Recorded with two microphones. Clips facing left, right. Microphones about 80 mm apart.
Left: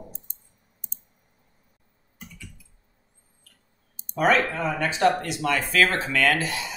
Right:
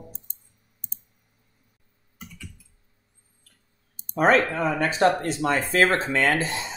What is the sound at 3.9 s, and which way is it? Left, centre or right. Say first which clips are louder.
Speech: right 2 dB; right.